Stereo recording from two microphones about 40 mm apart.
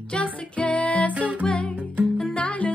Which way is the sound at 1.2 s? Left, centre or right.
Right.